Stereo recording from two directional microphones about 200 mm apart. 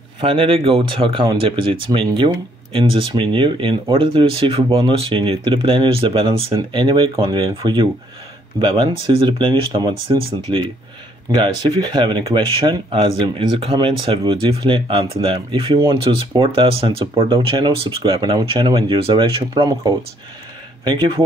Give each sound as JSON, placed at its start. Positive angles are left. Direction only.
{"t": 0.2, "sound": "speech", "side_deg": -25}